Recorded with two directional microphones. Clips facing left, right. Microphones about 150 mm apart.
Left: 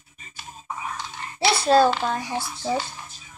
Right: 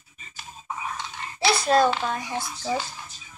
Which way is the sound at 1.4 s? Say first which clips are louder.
Left 2 dB; 30° left (ahead or behind).